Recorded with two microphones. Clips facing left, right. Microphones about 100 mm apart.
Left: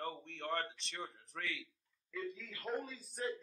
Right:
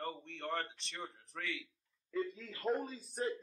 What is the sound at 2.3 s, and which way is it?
Speech, 35° right (ahead or behind).